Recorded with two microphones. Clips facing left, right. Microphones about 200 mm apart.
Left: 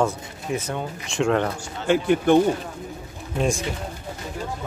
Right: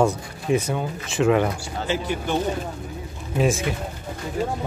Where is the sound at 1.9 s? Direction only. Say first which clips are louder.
Left 8 dB; 55° left (ahead or behind).